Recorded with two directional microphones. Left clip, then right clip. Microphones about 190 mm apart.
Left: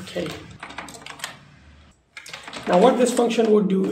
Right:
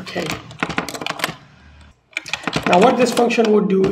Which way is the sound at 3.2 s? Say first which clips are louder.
Right 3 dB; centre (ahead or behind).